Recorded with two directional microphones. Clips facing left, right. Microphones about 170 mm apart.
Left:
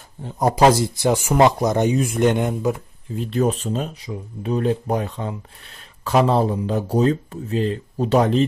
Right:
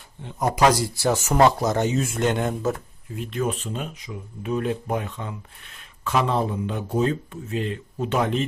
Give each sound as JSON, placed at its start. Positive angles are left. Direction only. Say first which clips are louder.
{"t": 0.2, "sound": "speech", "louder": "left 4 dB", "side_deg": 35}
{"t": 3.2, "sound": "speech", "louder": "left 6 dB", "side_deg": 35}